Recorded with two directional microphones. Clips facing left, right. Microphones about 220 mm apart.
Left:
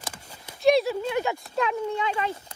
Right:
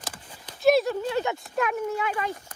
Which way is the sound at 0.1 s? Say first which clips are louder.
Even; 10° left (ahead or behind).